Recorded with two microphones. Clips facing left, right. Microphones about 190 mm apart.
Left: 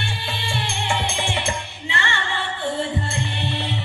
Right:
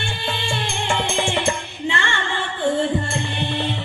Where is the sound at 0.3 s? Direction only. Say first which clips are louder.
Right 4 dB; 55° right (ahead or behind).